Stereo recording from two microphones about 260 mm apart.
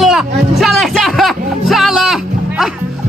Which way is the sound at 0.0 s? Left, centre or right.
Centre.